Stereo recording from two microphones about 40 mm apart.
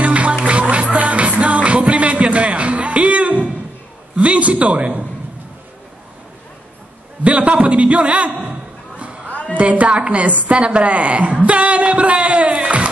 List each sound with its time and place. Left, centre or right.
0.0 s music: right
4.2 s a woman's voice: right
7.2 s a man's voice: right
9.3 s music: left
9.6 s a woman's voice: right